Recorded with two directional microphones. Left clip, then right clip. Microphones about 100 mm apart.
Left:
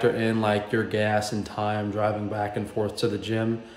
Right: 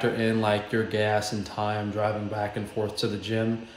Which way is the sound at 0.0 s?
20° left (ahead or behind).